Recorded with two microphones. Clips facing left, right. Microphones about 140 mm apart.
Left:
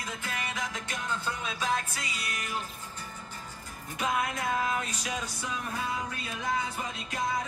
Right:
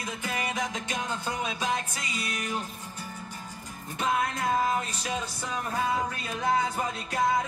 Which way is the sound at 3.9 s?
30° right (ahead or behind).